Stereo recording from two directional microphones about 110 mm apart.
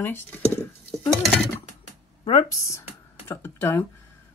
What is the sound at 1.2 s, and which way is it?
Speech, centre (ahead or behind).